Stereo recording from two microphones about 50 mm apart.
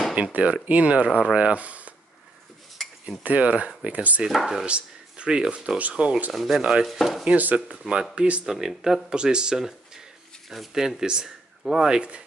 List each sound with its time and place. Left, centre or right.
0.4 s speech: right
2.8 s cutlery: centre
3.3 s speech: right
4.3 s speech: centre
4.6 s speech: right
5.8 s speech: right
6.3 s speech: centre
7.2 s speech: right
8.5 s speech: centre